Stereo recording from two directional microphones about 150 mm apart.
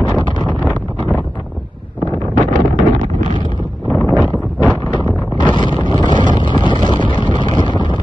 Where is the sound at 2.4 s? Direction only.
60° right (ahead or behind).